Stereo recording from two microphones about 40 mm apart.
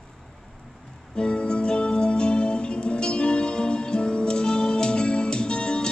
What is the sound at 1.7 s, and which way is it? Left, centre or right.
Music, centre.